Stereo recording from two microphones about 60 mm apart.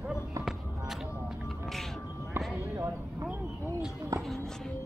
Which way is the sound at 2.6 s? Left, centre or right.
Right.